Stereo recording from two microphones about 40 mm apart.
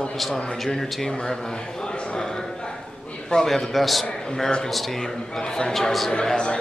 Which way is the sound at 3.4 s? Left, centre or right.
Centre.